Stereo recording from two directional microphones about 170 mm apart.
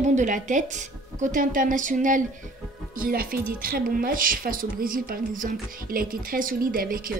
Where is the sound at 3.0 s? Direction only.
60° right (ahead or behind).